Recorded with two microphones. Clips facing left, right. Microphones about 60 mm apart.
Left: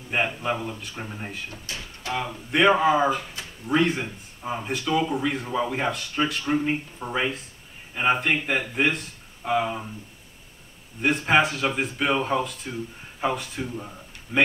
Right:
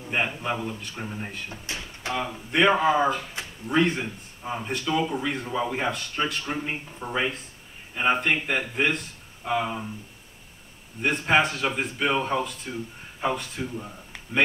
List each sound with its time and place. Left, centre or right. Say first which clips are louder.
0.1 s speech: left 2 dB; centre
1.5 s music: right 1 dB; right
2.5 s speech: left 1 dB; centre
11.0 s speech: left 1 dB; centre